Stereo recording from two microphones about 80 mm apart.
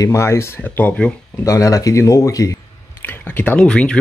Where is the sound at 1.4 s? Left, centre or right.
Left.